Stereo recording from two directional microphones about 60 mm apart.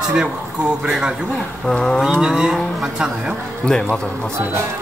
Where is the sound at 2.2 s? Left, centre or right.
Centre.